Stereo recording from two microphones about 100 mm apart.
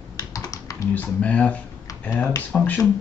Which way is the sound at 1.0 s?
15° left (ahead or behind).